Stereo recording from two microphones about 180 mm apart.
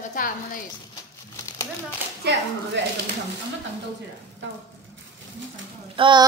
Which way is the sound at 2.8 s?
85° right.